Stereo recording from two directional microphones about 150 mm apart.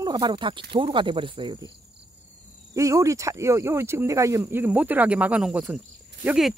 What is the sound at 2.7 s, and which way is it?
Speech, 20° right (ahead or behind).